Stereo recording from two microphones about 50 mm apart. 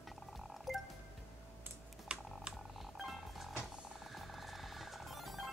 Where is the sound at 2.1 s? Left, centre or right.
Centre.